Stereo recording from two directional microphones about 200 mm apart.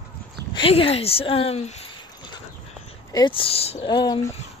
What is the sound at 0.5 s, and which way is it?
Speech, 30° left (ahead or behind).